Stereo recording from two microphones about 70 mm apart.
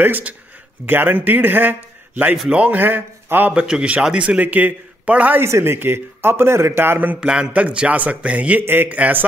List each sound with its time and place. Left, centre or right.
0.0 s a man's voice: right
3.5 s a man's voice: centre
5.4 s speech: right
7.2 s a man's voice: centre
8.6 s a man's voice: right